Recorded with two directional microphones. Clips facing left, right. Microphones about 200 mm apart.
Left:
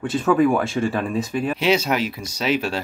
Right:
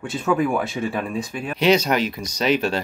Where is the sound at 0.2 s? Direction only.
Centre (ahead or behind).